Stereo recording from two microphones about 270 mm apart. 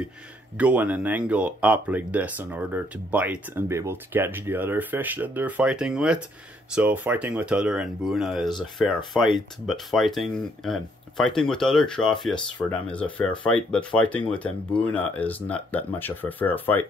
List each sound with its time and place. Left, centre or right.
0.6 s speech: centre